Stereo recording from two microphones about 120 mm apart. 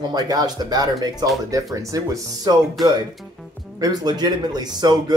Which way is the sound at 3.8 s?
35° right (ahead or behind).